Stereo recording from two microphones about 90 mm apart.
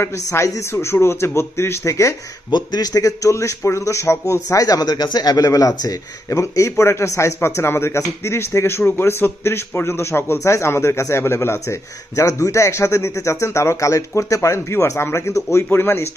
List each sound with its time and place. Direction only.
0.0 s speech: 30° left (ahead or behind)
2.5 s a man's voice: 45° left (ahead or behind); by 16.1 s 25° left (ahead or behind)